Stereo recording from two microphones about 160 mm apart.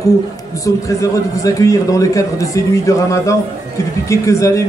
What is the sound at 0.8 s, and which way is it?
A man's voice, 20° left (ahead or behind).